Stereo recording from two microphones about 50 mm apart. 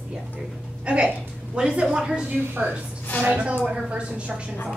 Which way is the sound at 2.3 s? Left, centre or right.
Right.